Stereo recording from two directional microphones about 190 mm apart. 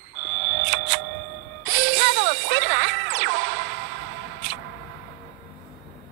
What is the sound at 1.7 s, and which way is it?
Music, 80° right.